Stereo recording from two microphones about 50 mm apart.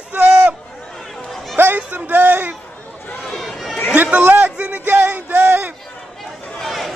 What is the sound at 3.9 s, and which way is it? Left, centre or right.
Chatter, right.